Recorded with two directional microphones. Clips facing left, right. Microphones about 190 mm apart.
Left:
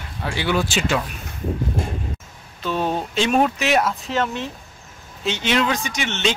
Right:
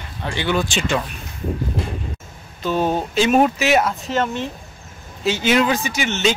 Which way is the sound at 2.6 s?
5° right (ahead or behind).